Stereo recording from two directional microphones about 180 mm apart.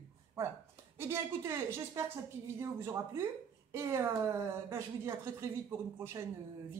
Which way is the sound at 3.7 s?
15° right (ahead or behind).